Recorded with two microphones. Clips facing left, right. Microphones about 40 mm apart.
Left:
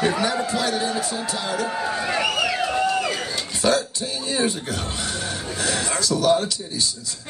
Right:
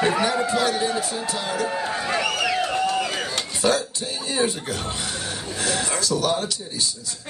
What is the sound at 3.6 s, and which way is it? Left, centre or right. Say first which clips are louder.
Cough: left 1 dB; right.